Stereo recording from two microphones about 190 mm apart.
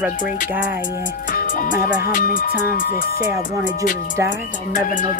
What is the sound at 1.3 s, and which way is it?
Speech, 45° left (ahead or behind).